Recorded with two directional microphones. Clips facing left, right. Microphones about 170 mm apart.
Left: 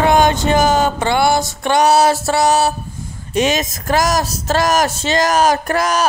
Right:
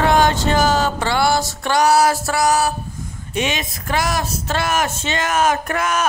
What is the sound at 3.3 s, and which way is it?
Speech, 40° left (ahead or behind).